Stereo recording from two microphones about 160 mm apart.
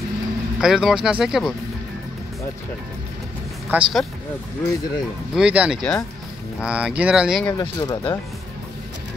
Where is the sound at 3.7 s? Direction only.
10° right (ahead or behind).